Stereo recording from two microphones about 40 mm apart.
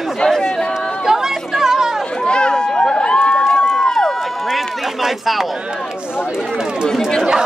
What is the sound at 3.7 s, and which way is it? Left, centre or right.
Run, centre.